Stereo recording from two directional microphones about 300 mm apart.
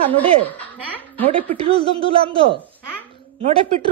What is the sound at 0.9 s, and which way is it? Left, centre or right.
Speech, centre.